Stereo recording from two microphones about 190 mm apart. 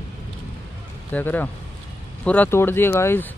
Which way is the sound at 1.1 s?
10° left (ahead or behind).